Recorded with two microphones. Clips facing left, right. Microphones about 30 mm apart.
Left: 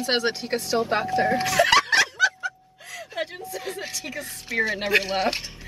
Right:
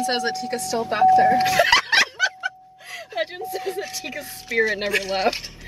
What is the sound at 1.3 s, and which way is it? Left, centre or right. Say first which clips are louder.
Speech: right 2 dB; centre.